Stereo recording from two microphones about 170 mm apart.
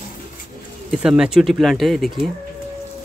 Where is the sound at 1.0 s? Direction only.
5° right (ahead or behind).